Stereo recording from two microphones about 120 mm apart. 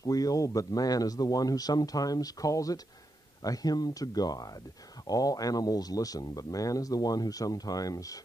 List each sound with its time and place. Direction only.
0.0 s speech: 30° left (ahead or behind)